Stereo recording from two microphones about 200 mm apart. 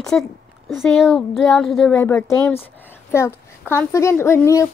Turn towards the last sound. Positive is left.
turn(degrees=15)  # may be behind; listen again after turning